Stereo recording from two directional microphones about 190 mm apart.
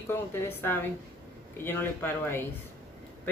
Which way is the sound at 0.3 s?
10° left (ahead or behind).